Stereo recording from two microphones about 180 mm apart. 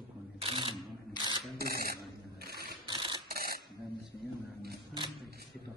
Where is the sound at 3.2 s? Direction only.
55° right (ahead or behind).